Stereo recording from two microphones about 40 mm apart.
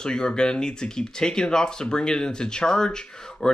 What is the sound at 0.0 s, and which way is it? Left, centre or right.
Speech, centre.